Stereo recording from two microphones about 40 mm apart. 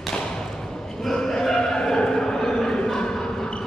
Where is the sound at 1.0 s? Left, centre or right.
Centre.